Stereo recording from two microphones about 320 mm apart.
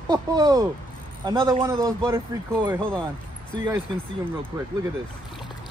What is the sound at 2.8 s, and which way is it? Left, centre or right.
Speech, centre.